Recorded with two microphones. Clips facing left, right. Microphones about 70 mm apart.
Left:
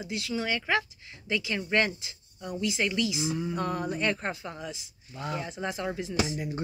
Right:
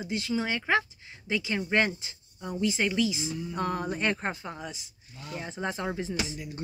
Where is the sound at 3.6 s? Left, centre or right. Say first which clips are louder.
Even; right.